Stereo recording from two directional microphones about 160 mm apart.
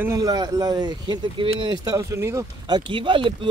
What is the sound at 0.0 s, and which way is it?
Speech, 20° right (ahead or behind).